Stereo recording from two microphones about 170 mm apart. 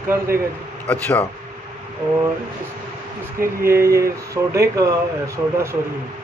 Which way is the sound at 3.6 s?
15° right (ahead or behind).